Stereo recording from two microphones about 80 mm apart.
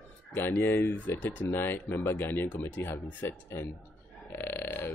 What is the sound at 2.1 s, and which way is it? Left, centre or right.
Speech, left.